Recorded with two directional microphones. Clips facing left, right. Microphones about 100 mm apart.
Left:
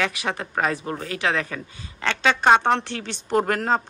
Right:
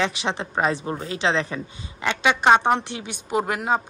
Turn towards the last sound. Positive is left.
turn(degrees=-10)  # may be behind; listen again after turning